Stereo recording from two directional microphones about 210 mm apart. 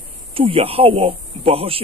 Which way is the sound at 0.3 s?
25° right (ahead or behind).